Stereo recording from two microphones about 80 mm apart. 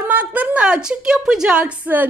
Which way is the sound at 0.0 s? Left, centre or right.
Right.